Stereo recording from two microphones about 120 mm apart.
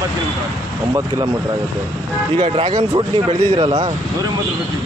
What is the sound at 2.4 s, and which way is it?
Speech, 55° right (ahead or behind).